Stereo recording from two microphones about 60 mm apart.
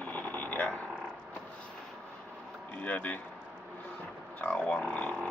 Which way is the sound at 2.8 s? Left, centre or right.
Left.